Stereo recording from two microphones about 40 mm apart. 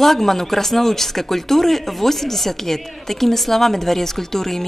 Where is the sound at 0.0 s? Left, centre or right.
Centre.